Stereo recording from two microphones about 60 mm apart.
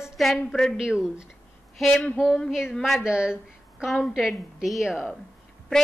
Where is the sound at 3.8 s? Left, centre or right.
Centre.